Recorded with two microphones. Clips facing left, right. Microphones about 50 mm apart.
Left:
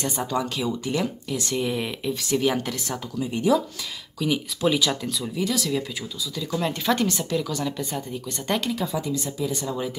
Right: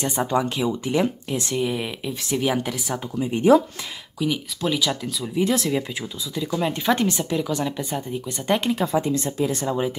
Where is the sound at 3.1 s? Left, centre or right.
Right.